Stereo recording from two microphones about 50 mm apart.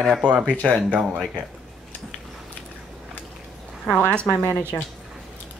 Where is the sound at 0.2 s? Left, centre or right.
Centre.